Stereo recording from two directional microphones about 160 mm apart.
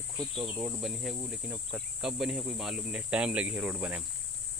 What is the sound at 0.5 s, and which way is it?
Cricket, 20° right (ahead or behind).